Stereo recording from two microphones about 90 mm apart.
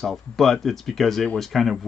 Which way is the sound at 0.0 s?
Centre (ahead or behind).